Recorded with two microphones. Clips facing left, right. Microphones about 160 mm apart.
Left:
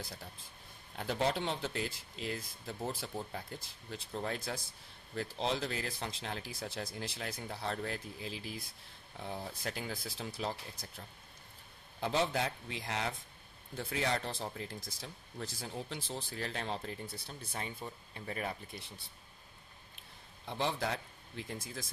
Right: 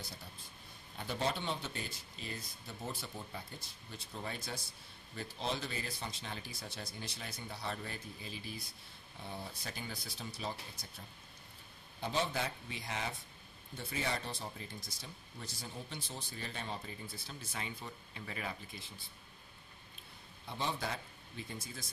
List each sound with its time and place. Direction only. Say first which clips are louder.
0.9 s speech: left 4 dB; 90° left
3.9 s speech: left 5 dB; 90° left
12.0 s speech: left 3 dB; 80° left
17.5 s speech: left 3 dB; 40° left (ahead or behind)
18.7 s speech: left 3 dB; 65° left (ahead or behind)
20.4 s speech: left 4 dB; 90° left